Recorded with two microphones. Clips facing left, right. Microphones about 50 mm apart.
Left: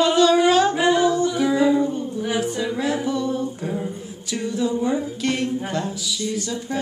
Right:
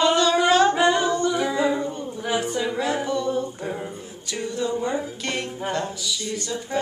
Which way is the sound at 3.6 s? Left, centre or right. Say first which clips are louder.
Left 3 dB; centre.